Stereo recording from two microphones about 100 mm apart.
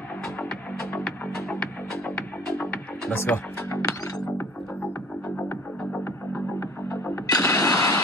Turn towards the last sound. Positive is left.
turn(degrees=35)  # may be behind; listen again after turning